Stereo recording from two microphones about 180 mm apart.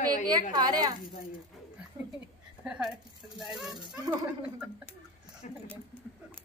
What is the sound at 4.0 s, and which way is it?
Speech, 20° right (ahead or behind).